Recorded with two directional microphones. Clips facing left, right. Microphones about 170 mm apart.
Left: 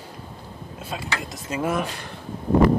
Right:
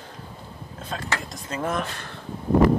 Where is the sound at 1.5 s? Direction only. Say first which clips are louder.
Left 2 dB; 10° left (ahead or behind).